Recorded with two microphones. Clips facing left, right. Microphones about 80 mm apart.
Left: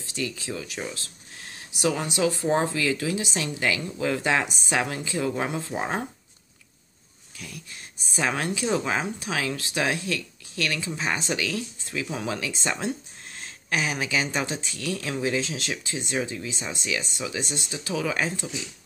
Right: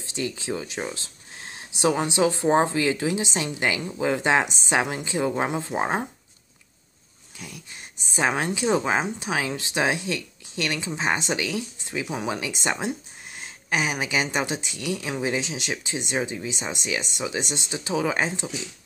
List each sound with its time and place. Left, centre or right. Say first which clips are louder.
0.0 s speech: right 2 dB; right
7.3 s speech: even; right